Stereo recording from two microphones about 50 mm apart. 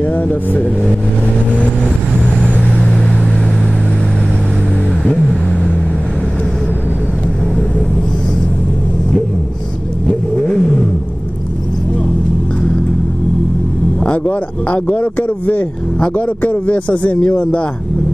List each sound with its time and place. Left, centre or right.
0.0 s vehicle: left
10.0 s vehicle: centre
14.0 s speech: left